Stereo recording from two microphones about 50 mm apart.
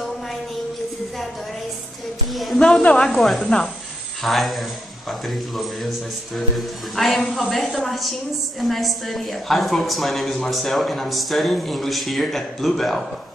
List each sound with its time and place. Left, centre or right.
2.3 s a sound: centre
2.6 s speech: centre
3.2 s a woman's voice: centre
3.4 s speech: centre
4.2 s a woman's voice: centre